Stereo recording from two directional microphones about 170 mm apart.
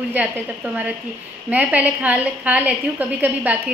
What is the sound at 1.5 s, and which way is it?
A woman's voice, 10° right (ahead or behind).